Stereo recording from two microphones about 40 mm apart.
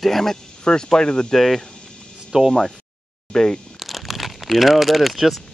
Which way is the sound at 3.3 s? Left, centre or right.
Centre.